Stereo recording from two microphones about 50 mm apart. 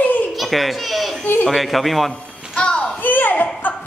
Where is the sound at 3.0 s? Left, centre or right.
Left.